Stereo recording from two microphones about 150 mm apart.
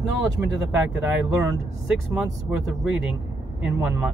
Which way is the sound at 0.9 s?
15° right (ahead or behind).